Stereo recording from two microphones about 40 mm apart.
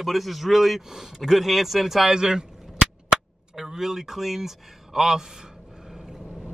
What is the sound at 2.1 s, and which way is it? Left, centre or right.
Cap gun, centre.